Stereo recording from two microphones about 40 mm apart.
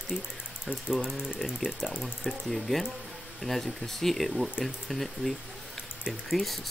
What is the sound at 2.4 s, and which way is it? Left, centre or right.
Speech, centre.